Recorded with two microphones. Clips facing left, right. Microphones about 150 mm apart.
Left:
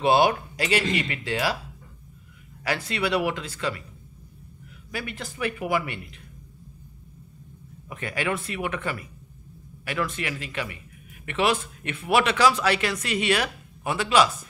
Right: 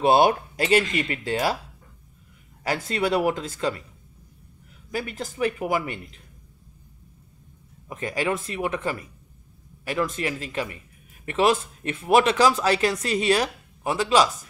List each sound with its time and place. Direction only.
0.0 s speech: 45° right (ahead or behind)
0.3 s a woman's voice: 30° right (ahead or behind)
2.6 s a woman's voice: 40° right (ahead or behind)
4.9 s a woman's voice: 45° right (ahead or behind)
7.9 s a woman's voice: 35° right (ahead or behind)